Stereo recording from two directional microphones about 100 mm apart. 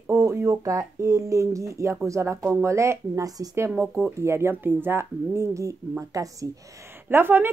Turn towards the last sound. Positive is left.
turn(degrees=-20)  # may be behind; listen again after turning